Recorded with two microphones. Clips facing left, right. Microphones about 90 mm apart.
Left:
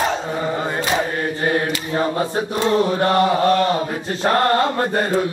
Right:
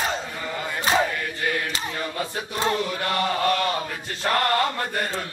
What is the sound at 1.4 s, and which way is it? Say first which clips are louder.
Chant: left 6 dB; 35° left (ahead or behind).